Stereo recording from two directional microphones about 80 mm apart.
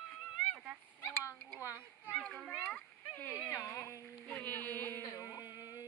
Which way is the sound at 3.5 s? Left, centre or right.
Left.